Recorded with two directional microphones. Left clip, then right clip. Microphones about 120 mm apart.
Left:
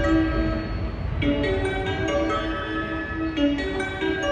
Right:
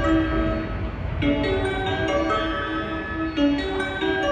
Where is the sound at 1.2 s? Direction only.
25° right (ahead or behind).